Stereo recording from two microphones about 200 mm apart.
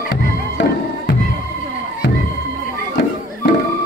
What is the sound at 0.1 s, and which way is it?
Music, 50° left (ahead or behind).